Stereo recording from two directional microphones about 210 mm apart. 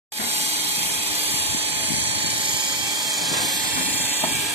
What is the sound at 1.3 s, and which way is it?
Vehicle, 10° right (ahead or behind).